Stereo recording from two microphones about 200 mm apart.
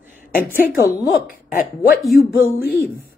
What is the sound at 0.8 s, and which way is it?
Speech, 45° left (ahead or behind).